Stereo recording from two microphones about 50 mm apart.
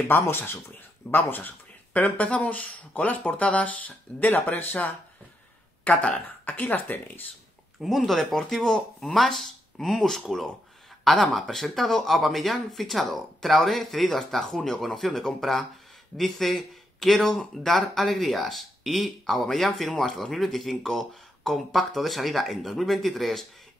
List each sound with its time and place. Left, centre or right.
0.1 s speech: left
2.0 s speech: left
7.8 s speech: centre